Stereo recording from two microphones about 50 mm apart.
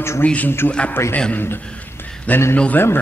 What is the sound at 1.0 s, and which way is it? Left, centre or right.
Speech, left.